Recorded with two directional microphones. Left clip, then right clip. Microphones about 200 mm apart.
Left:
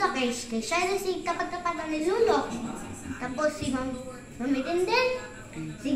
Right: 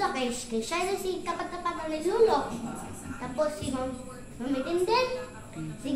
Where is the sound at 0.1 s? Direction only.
15° right (ahead or behind).